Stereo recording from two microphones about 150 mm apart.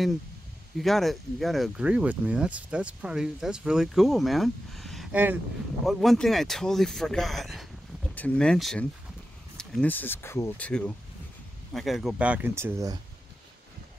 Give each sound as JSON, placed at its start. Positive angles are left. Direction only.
{"t": 0.7, "sound": "speech", "side_deg": 0}
{"t": 5.1, "sound": "speech", "side_deg": -10}
{"t": 5.9, "sound": "speech", "side_deg": 0}
{"t": 10.7, "sound": "speech", "side_deg": 5}